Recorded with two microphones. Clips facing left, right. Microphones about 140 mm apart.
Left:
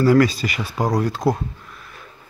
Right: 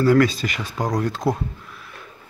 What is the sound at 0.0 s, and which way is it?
Speech, centre (ahead or behind).